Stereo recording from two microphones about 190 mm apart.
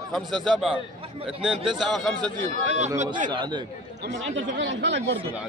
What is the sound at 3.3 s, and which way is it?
Speech, 25° right (ahead or behind).